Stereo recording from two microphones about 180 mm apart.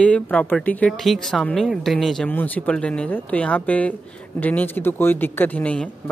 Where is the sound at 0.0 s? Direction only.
5° left (ahead or behind).